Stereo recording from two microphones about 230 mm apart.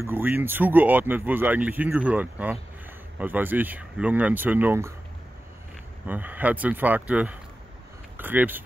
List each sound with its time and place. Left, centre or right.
0.0 s speech: centre
6.0 s speech: centre